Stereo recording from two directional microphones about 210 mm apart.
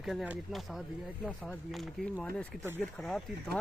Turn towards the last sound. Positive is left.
turn(degrees=0)  # may be behind; listen again after turning